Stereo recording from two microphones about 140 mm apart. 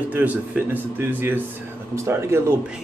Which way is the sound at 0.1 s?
10° right (ahead or behind).